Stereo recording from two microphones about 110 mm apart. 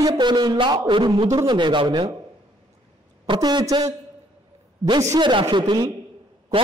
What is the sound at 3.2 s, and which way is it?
Speech, 40° right (ahead or behind).